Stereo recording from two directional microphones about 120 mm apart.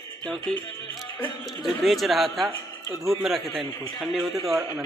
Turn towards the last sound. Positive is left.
turn(degrees=0)  # may be behind; listen again after turning